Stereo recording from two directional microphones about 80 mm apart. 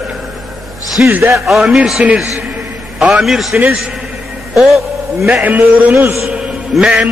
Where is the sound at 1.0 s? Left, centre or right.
Right.